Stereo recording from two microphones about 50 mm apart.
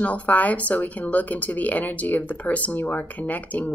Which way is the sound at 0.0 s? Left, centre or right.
Left.